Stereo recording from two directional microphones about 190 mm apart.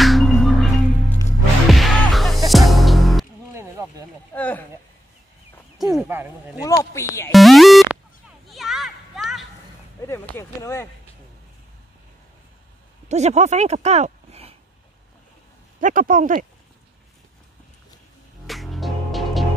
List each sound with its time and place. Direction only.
0.0 s music: centre (ahead or behind)
3.5 s a sound: 15° right (ahead or behind)
4.3 s a sound: 10° left (ahead or behind)
5.8 s a sound: centre (ahead or behind)
6.0 s speech: 10° right (ahead or behind)
6.6 s speech: 15° left (ahead or behind)
7.2 s music: centre (ahead or behind)
8.5 s a sound: centre (ahead or behind)
10.0 s speech: 15° left (ahead or behind)
13.1 s speech: 35° right (ahead or behind)
15.8 s speech: 45° right (ahead or behind)
18.5 s music: centre (ahead or behind)